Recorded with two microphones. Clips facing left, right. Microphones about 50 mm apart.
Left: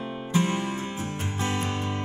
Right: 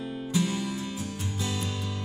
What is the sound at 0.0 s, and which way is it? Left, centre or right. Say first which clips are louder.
Music: left 2 dB; left.